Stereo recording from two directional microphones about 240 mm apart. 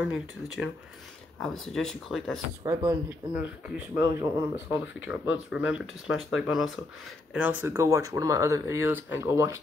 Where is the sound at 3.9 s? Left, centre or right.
Left.